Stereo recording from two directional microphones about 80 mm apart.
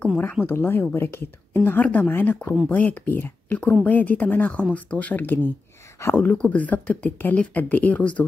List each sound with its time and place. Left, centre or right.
0.2 s speech: left
6.3 s speech: centre